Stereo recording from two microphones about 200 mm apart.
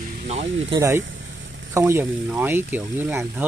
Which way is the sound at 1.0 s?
70° right (ahead or behind).